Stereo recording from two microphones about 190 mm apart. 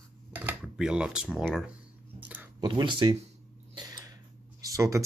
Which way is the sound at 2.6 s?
25° right (ahead or behind).